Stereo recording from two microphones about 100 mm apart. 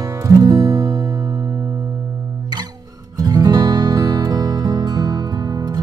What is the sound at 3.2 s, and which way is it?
Music, 40° right (ahead or behind).